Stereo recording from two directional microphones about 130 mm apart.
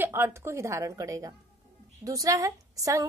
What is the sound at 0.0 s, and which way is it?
A woman's voice, 15° right (ahead or behind).